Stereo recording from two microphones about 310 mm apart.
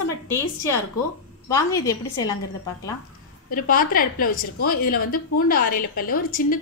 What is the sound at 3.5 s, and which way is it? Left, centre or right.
A woman's voice, left.